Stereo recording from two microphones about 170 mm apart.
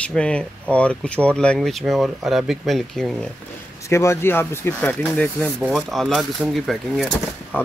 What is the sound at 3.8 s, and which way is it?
Speech, 15° left (ahead or behind).